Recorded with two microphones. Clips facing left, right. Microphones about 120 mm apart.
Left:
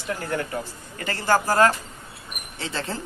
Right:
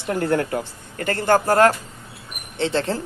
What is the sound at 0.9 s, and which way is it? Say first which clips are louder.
A man's voice: right 4 dB; 55° right (ahead or behind).